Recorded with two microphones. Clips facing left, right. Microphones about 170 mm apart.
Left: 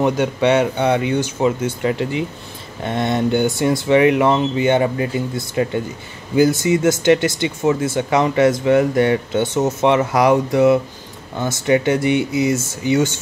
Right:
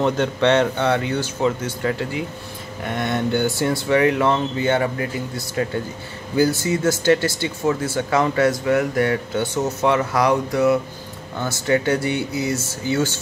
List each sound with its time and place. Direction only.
0.0 s speech: 10° left (ahead or behind)